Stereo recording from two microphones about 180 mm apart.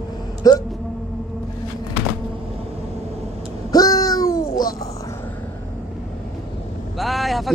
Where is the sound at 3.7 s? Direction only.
20° left (ahead or behind).